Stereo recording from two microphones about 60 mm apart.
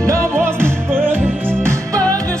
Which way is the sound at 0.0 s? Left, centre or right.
Right.